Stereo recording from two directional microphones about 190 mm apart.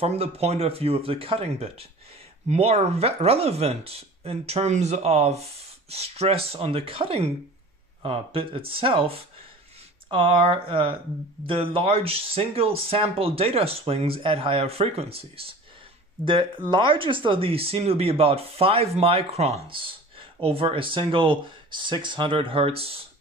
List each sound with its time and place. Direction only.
0.0 s speech: 30° right (ahead or behind)